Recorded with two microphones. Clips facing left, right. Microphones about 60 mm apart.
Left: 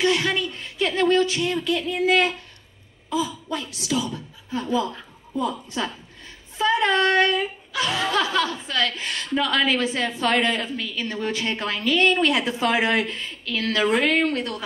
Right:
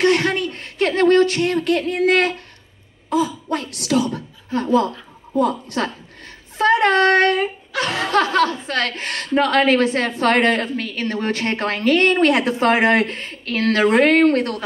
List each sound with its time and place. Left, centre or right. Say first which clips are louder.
0.0 s a woman's voice: right 5 dB; right
6.6 s female singing: right 5 dB; right
7.7 s a woman's voice: right 4 dB; right